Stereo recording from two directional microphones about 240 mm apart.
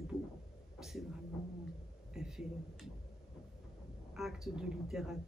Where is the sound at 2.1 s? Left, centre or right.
Centre.